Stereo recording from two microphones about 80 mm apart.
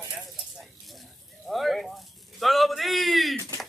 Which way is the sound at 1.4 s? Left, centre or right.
Centre.